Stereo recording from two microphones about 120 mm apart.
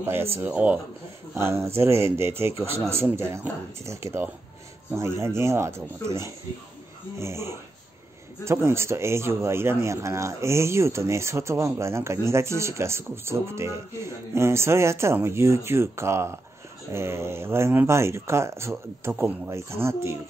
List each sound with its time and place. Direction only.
0.0 s a man's voice: 20° right (ahead or behind)